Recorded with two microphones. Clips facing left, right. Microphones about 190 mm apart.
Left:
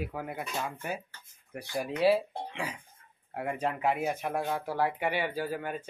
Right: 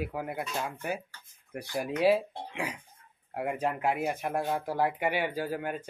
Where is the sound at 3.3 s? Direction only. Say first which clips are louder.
Right 1 dB; 10° right (ahead or behind).